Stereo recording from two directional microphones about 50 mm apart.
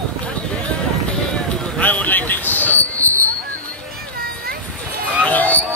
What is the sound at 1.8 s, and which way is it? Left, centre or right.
Speech, left.